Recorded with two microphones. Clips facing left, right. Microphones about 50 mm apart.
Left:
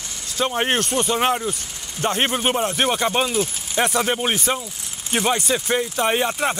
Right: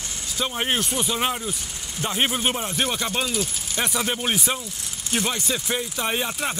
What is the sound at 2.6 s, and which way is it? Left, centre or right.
Speech, left.